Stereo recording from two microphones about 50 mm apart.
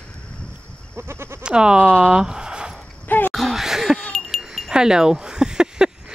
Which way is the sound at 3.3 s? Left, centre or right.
Centre.